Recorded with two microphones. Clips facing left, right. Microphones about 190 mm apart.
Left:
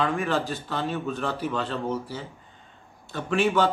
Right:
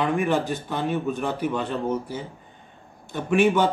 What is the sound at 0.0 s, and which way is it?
A man's voice, 15° right (ahead or behind).